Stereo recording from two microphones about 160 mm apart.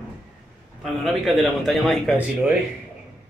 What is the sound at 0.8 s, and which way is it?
A man's voice, centre (ahead or behind).